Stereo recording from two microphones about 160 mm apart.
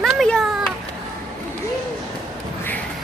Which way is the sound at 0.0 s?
Centre (ahead or behind).